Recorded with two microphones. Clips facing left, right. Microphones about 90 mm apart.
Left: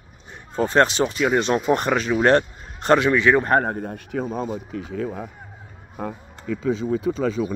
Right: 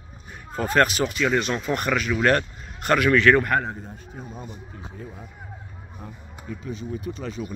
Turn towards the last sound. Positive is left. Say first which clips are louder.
# left 9 dB
turn(degrees=90)